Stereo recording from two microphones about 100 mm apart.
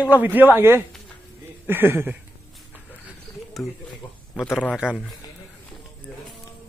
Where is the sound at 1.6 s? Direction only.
20° right (ahead or behind).